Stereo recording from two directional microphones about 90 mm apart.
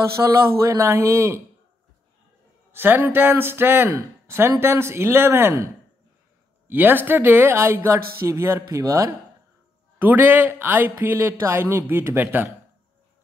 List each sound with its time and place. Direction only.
0.1 s speech: 30° right (ahead or behind)
2.7 s speech: 25° right (ahead or behind)
6.7 s speech: 20° right (ahead or behind)
10.0 s speech: 20° right (ahead or behind)